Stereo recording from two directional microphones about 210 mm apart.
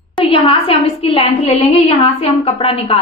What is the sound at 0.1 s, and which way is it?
A woman's voice, 25° left (ahead or behind).